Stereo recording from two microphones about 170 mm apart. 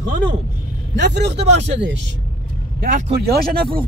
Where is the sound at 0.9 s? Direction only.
85° right.